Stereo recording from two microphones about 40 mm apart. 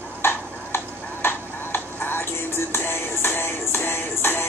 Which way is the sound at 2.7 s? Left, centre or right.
Left.